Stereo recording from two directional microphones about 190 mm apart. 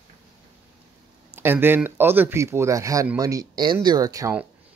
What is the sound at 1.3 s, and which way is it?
Speech, 10° right (ahead or behind).